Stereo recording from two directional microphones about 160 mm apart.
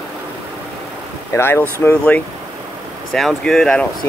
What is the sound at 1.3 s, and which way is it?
Speech, 15° left (ahead or behind).